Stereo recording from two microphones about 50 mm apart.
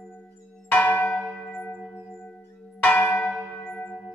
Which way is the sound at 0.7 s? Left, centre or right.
Left.